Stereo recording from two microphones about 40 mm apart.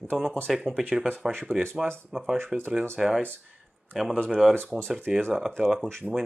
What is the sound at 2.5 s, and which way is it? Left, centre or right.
Speech, right.